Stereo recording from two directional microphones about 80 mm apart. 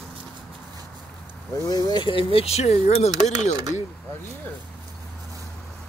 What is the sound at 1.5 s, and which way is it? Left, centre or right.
Speech, left.